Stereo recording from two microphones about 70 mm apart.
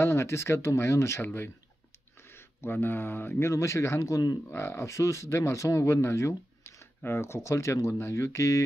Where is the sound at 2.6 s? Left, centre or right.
Left.